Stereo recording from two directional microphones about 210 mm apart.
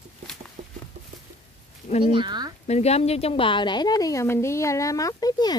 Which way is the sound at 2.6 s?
30° left (ahead or behind).